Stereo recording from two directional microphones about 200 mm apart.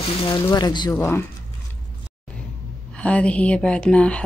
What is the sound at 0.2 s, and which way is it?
Speech, 20° left (ahead or behind).